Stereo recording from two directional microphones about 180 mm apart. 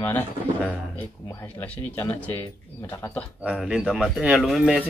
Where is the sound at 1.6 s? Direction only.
10° left (ahead or behind).